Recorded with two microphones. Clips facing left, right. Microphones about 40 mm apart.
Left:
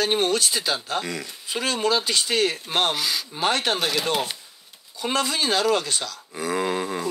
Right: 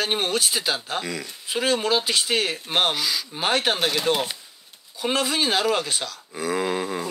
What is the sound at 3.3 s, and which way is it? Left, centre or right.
Speech, centre.